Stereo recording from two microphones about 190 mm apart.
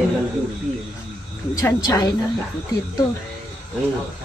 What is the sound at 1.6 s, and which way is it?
Speech, 20° left (ahead or behind).